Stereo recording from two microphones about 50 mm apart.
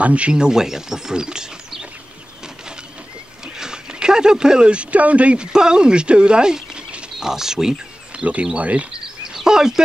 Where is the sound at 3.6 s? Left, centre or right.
Centre.